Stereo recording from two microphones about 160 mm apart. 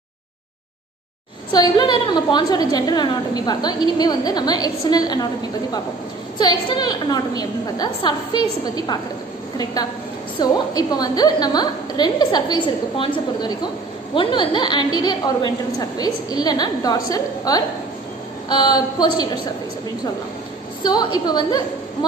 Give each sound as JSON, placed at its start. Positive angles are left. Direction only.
{"t": 1.5, "sound": "a woman's voice", "side_deg": 25}
{"t": 10.4, "sound": "a woman's voice", "side_deg": 25}
{"t": 20.8, "sound": "a woman's voice", "side_deg": 25}